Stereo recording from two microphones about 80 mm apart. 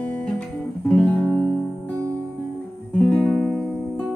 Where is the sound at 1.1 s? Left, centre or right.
Centre.